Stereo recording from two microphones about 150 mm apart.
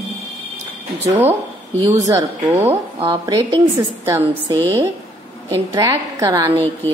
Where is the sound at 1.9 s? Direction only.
20° right (ahead or behind).